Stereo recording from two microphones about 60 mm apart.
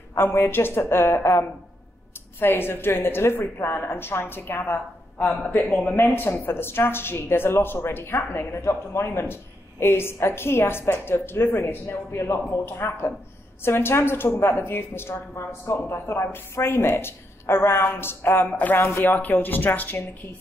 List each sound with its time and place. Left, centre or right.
0.2 s a woman's voice: left
2.4 s speech: left
5.4 s speech: left
18.8 s a woman's voice: left
19.0 s speech: left